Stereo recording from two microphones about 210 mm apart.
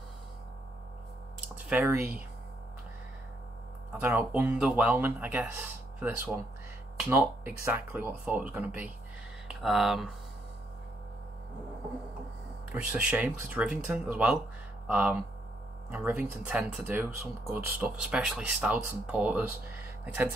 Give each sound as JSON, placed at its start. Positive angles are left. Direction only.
{"t": 1.7, "sound": "speech", "side_deg": -10}
{"t": 4.0, "sound": "speech", "side_deg": -10}
{"t": 12.9, "sound": "speech", "side_deg": -5}